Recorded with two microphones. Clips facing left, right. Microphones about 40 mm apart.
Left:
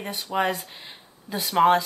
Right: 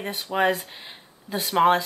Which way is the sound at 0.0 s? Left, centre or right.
Centre.